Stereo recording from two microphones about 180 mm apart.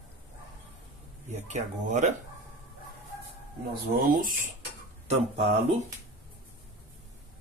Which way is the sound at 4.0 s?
55° right (ahead or behind).